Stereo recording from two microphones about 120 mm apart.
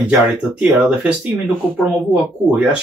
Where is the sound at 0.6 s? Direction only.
10° right (ahead or behind).